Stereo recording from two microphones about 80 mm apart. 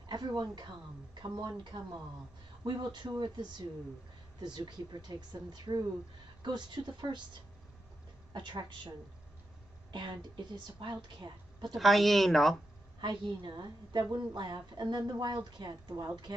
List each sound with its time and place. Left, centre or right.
0.0 s a woman's voice: right
2.6 s a woman's voice: right
8.3 s a woman's voice: right
11.7 s speech: centre
13.0 s a woman's voice: right